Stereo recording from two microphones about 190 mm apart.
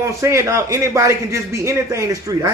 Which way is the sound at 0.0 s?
15° right (ahead or behind).